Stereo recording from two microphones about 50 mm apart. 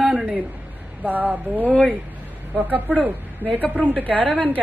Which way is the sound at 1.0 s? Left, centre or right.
Right.